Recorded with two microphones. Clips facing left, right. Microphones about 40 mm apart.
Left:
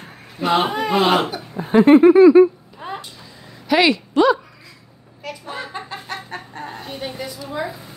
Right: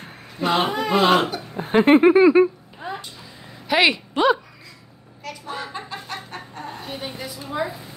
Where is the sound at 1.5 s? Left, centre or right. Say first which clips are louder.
Left 4 dB; centre.